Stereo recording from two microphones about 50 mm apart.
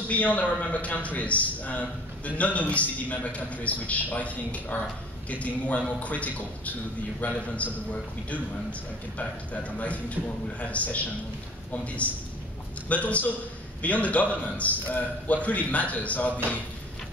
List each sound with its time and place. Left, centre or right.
0.1 s a man's voice: left
9.5 s a man's voice: left